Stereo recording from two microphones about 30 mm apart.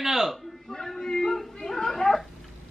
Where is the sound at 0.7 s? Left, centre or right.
Centre.